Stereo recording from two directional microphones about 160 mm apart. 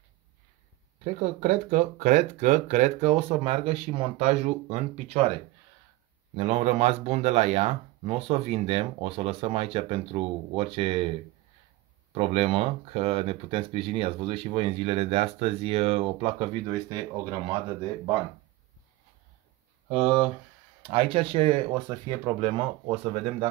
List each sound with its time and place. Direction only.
1.4 s speech: 50° right (ahead or behind)
6.3 s speech: 45° right (ahead or behind)
12.1 s speech: 40° right (ahead or behind); by 17.3 s 25° right (ahead or behind)
19.9 s speech: 30° right (ahead or behind)